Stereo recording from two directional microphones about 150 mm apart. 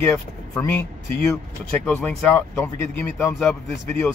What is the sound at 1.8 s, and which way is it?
Speech, 5° left (ahead or behind).